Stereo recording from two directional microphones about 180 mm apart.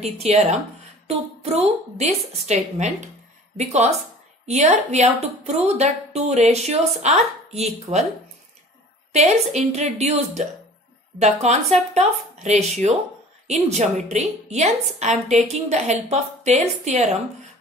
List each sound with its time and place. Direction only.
0.0 s a woman's voice: 35° right (ahead or behind)
9.1 s a woman's voice: 40° right (ahead or behind)